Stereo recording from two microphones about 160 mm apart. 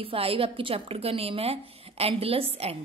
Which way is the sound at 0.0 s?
35° right (ahead or behind).